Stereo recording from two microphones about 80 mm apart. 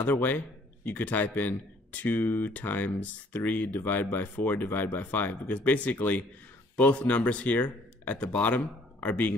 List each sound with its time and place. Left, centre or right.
0.0 s speech: left